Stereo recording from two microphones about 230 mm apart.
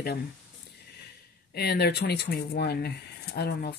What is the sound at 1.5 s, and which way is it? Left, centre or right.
Speech, left.